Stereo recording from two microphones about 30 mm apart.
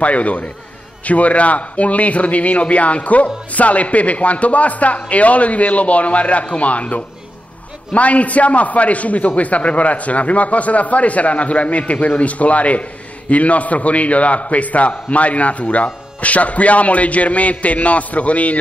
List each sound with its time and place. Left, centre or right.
0.0 s a man's voice: left